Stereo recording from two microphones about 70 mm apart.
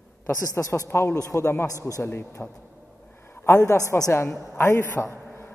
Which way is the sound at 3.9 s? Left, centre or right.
Left.